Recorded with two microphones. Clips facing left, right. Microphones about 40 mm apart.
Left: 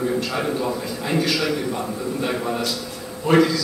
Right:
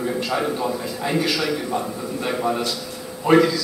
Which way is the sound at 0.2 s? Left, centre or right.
Centre.